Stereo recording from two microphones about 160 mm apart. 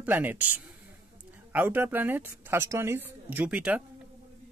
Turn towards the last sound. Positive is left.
turn(degrees=-10)  # may be behind; listen again after turning